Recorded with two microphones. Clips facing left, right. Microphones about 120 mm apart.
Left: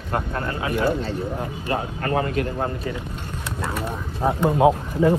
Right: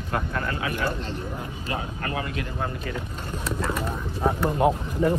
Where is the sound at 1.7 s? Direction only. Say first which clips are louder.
Left 7 dB; 40° left (ahead or behind).